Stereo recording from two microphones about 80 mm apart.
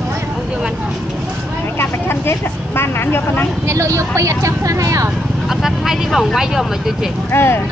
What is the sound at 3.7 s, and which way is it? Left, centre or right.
Speech, right.